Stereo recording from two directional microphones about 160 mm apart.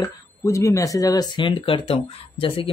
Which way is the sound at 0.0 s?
20° left (ahead or behind).